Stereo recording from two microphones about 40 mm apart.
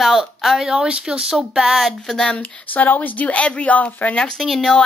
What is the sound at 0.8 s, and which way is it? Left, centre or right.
Speech, right.